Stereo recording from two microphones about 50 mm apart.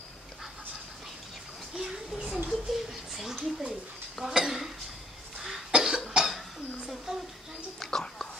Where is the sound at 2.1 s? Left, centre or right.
Centre.